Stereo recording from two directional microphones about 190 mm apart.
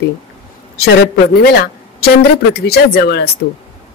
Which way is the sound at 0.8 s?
60° left (ahead or behind).